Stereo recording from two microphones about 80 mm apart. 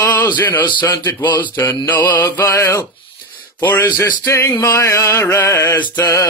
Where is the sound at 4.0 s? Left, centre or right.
Left.